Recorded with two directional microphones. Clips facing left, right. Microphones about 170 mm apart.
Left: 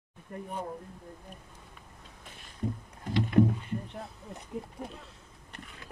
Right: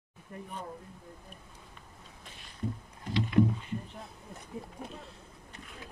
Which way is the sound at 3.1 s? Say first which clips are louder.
Left 2 dB; 45° left (ahead or behind).